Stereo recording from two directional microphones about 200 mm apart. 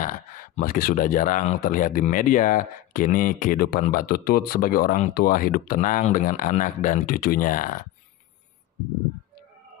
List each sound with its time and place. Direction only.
0.0 s speech: 45° left (ahead or behind)